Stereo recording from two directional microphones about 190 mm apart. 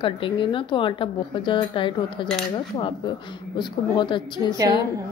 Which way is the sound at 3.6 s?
25° left (ahead or behind).